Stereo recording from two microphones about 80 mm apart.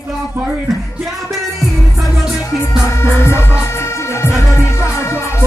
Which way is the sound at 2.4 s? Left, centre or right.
Left.